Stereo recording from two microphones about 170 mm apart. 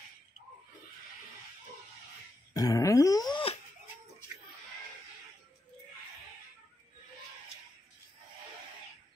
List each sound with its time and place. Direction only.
2.5 s groan: 20° left (ahead or behind)